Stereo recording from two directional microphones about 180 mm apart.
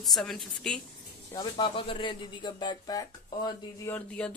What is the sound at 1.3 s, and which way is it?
Speech, 25° left (ahead or behind).